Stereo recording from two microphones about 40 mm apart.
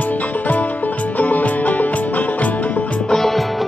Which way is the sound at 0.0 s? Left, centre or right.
Left.